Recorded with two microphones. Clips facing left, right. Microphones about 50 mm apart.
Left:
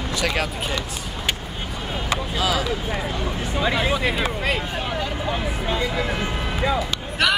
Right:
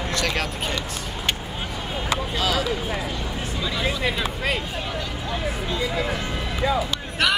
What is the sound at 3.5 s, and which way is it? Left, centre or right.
Speech, left.